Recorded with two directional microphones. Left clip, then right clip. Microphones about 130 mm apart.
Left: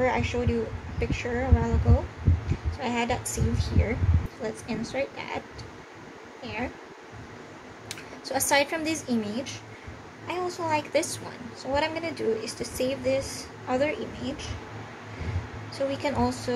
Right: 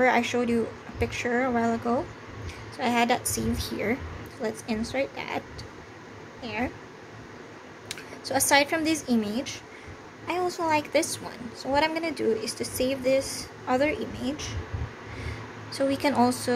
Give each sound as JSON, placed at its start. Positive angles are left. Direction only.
{"t": 0.0, "sound": "speech", "side_deg": -45}
{"t": 2.8, "sound": "speech", "side_deg": -35}
{"t": 6.4, "sound": "speech", "side_deg": -35}
{"t": 7.9, "sound": "speech", "side_deg": -35}
{"t": 11.6, "sound": "speech", "side_deg": -40}
{"t": 15.7, "sound": "speech", "side_deg": -35}